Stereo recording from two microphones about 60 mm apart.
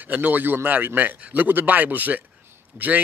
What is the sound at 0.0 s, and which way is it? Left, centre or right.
A man's voice, right.